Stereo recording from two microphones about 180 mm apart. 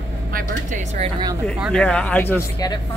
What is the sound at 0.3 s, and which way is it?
Speech, 45° right (ahead or behind).